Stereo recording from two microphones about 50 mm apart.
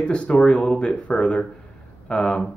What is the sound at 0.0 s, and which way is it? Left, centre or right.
Speech, centre.